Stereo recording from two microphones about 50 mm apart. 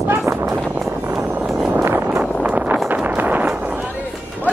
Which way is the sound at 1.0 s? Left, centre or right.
Right.